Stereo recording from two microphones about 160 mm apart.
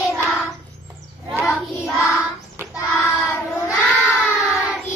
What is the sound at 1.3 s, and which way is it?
Child singing, 5° right (ahead or behind).